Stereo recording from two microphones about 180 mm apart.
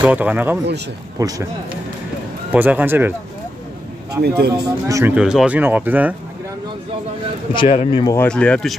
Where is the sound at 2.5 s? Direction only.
10° right (ahead or behind).